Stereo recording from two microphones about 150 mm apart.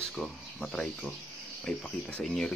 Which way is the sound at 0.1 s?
Centre (ahead or behind).